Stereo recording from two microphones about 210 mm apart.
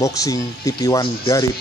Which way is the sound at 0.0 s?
15° left (ahead or behind).